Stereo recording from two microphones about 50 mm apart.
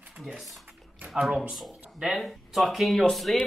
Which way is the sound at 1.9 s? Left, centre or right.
Centre.